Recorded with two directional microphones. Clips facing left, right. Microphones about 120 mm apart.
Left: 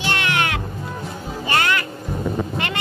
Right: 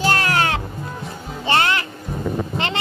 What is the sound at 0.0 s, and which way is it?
Music, 35° right (ahead or behind).